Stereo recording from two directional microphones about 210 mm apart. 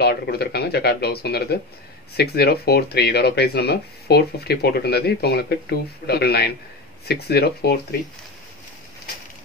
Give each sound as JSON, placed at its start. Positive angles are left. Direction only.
{"t": 0.0, "sound": "speech", "side_deg": 50}